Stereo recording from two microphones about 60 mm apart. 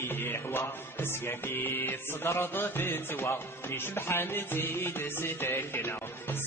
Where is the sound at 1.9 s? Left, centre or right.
Left.